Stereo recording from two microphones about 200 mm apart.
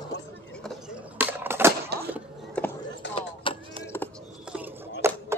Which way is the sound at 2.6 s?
5° left (ahead or behind).